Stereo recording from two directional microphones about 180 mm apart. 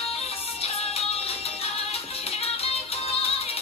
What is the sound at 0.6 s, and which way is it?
Music, 35° left (ahead or behind).